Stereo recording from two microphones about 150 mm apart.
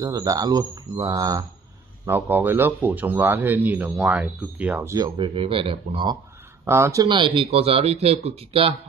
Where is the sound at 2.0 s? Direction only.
15° right (ahead or behind); by 6.1 s 35° right (ahead or behind).